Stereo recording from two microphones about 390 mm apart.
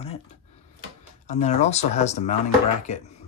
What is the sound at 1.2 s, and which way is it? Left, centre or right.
Speech, centre.